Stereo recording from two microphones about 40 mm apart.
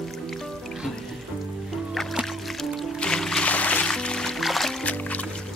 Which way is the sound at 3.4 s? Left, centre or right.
Left.